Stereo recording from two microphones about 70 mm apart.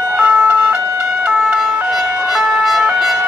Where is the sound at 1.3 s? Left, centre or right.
Centre.